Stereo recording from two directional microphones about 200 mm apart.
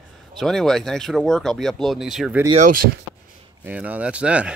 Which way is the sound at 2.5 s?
40° right (ahead or behind).